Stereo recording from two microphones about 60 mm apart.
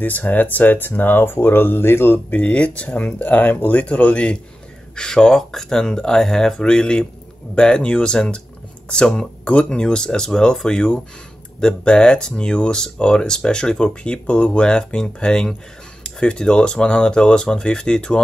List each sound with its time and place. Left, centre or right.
0.0 s speech: left
2.4 s speech: left